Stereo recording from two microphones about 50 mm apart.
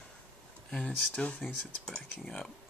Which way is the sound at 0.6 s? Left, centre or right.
Centre.